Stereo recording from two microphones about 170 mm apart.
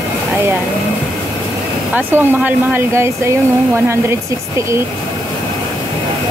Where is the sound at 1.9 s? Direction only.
10° right (ahead or behind).